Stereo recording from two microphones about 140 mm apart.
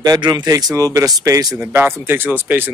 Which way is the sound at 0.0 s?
30° right (ahead or behind).